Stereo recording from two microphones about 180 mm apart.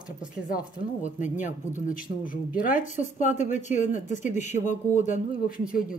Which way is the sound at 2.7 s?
45° left (ahead or behind).